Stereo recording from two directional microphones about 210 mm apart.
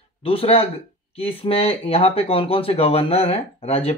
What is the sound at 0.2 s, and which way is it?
Speech, 25° left (ahead or behind).